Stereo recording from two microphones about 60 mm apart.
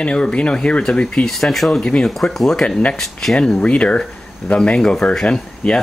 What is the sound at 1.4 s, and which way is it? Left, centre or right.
Speech, centre.